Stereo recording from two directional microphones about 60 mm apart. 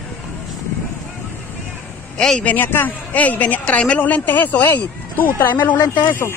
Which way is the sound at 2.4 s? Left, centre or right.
Left.